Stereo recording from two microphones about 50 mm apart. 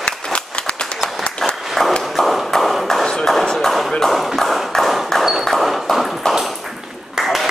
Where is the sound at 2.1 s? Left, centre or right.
Centre.